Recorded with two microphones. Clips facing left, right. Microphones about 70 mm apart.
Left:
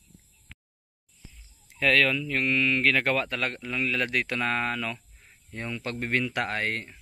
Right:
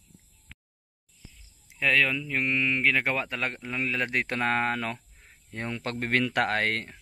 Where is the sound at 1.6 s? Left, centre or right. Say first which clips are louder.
Left 2 dB; centre.